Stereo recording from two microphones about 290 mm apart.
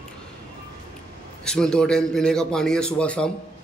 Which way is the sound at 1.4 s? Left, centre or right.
Centre.